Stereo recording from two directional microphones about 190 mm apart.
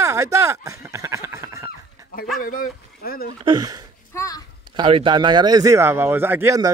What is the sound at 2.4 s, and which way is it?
Speech, 45° left (ahead or behind).